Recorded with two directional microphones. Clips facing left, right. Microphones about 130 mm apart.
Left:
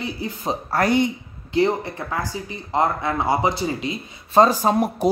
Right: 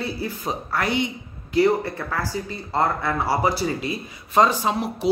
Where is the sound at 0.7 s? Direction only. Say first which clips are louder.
Left 5 dB; 40° left (ahead or behind).